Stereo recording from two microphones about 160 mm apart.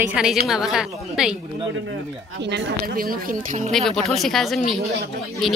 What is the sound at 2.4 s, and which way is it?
Speech, 75° right (ahead or behind).